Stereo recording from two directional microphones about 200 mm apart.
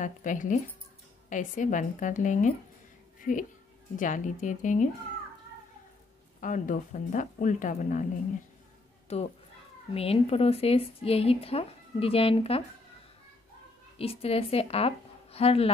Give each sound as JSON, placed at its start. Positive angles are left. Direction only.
{"t": 0.0, "sound": "speech", "side_deg": 40}
{"t": 3.2, "sound": "a sound", "side_deg": 40}
{"t": 3.9, "sound": "speech", "side_deg": 40}
{"t": 6.4, "sound": "speech", "side_deg": 40}
{"t": 9.1, "sound": "speech", "side_deg": 30}
{"t": 13.9, "sound": "a woman's voice", "side_deg": 30}